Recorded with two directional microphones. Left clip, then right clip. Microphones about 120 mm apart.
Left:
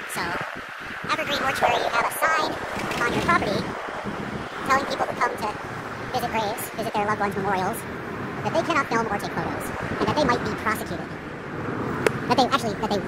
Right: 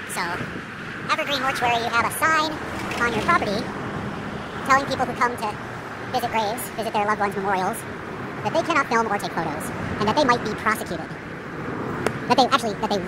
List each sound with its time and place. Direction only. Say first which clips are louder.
1.0 s speech: right 2 dB; 20° right (ahead or behind)
4.6 s speech: right 3 dB; 20° right (ahead or behind)
12.3 s speech: right 5 dB; 15° right (ahead or behind)